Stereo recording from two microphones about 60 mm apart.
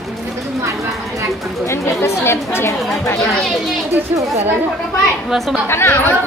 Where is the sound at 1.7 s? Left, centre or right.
Left.